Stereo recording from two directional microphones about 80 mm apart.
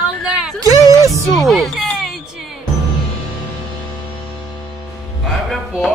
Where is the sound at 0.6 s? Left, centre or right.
Right.